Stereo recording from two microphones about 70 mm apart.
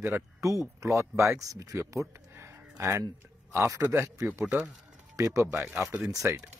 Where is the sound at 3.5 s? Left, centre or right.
Right.